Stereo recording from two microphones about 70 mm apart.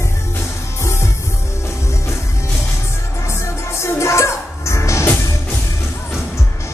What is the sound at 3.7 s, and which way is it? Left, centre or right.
Music, left.